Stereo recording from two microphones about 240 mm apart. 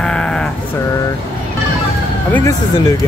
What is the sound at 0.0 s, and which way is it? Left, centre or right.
Sheep, centre.